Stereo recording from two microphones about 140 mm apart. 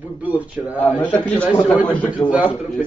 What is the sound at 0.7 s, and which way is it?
A man's voice, 10° left (ahead or behind).